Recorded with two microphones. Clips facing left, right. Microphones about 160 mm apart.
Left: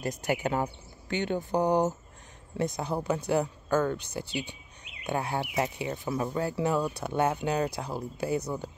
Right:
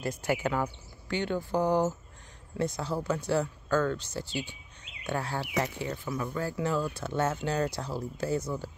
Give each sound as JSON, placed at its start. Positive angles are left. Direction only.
{"t": 0.0, "sound": "speech", "side_deg": 15}